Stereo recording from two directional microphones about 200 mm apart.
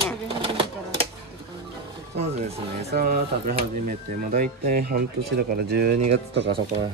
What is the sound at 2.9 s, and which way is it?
Speech, 50° right (ahead or behind).